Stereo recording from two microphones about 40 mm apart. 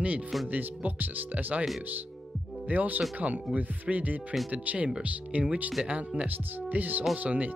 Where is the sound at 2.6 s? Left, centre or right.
Right.